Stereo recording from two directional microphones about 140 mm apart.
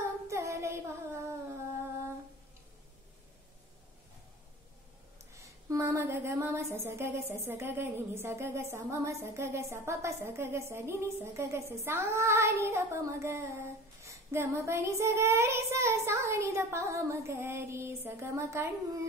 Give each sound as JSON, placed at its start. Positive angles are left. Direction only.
{"t": 0.0, "sound": "child singing", "side_deg": -20}
{"t": 5.3, "sound": "a woman's voice", "side_deg": -20}